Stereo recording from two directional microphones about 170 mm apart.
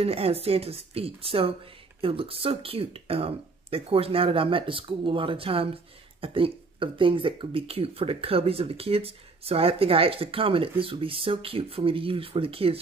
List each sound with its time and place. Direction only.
0.0 s speech: 35° right (ahead or behind)